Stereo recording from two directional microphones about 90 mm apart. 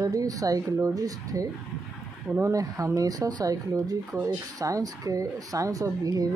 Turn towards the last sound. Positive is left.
turn(degrees=-45)  # may be behind; listen again after turning